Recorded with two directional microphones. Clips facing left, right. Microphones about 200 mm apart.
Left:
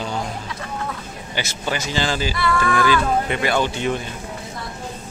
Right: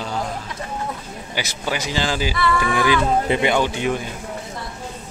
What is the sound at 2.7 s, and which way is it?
Speech, 15° right (ahead or behind).